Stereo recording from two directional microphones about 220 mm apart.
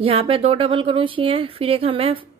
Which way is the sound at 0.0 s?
25° right (ahead or behind).